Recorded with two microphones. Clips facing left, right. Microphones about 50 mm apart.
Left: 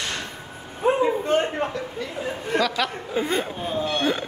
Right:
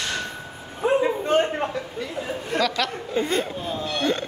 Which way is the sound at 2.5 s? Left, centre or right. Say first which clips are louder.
Left 1 dB; centre.